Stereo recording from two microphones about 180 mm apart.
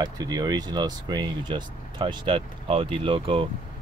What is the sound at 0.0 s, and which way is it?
Speech, 20° right (ahead or behind).